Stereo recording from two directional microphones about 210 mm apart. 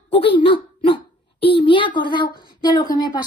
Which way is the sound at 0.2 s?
25° left (ahead or behind).